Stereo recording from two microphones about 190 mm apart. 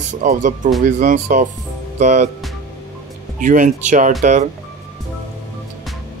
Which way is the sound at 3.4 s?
40° right (ahead or behind).